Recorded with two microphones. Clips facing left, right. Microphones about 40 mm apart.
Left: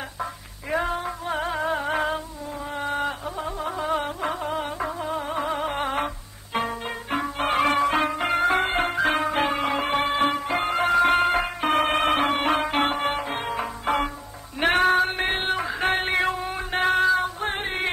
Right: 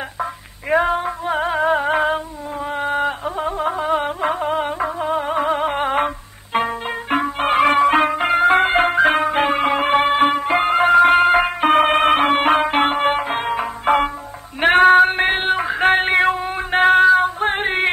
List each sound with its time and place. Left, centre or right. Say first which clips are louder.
0.7 s music: right 8 dB; right
2.0 s a sound: right 7 dB; right
3.7 s music: right 6 dB; right
11.3 s music: right 8 dB; right
15.8 s music: right 9 dB; right
17.2 s female singing: right 8 dB; right